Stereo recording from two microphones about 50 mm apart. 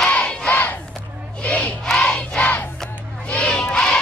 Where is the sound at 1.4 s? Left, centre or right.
Left.